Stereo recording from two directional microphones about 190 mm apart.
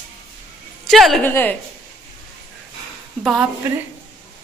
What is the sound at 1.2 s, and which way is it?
Speech, 10° left (ahead or behind).